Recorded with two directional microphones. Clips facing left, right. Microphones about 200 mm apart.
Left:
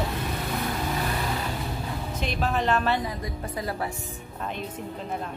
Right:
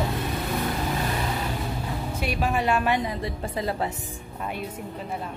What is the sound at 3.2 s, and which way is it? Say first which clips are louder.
Speech: right 3 dB; 25° right (ahead or behind).